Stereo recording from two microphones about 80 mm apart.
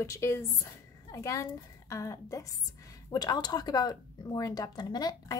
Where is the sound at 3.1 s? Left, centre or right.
Left.